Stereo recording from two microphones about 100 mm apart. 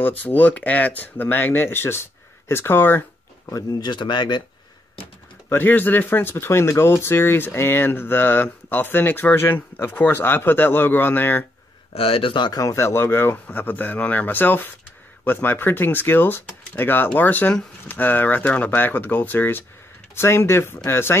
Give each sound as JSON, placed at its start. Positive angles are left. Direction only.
{"t": 0.0, "sound": "speech", "side_deg": 20}
{"t": 3.5, "sound": "speech", "side_deg": 45}
{"t": 5.5, "sound": "speech", "side_deg": 20}
{"t": 11.9, "sound": "speech", "side_deg": 70}
{"t": 12.5, "sound": "speech", "side_deg": 30}